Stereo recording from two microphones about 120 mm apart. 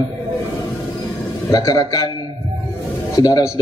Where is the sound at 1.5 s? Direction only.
30° left (ahead or behind).